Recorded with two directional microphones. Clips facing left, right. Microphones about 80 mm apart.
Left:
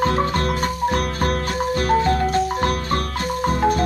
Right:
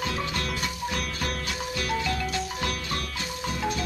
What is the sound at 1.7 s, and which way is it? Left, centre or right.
Music, left.